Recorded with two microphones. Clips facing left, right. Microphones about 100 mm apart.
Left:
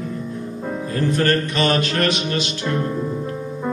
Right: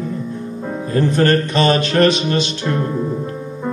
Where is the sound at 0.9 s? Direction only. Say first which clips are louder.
Right 5 dB; 30° right (ahead or behind).